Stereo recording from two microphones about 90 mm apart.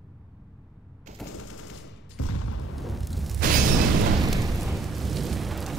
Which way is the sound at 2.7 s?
Centre (ahead or behind).